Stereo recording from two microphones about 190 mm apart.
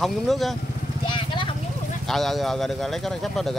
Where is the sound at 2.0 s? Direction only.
Centre (ahead or behind).